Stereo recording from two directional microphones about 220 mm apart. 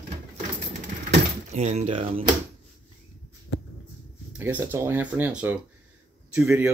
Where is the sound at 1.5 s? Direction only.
30° right (ahead or behind).